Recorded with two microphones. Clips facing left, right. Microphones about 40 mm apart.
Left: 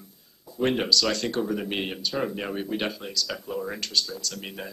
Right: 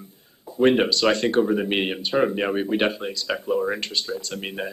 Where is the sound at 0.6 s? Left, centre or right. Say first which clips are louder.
Right 5 dB; right.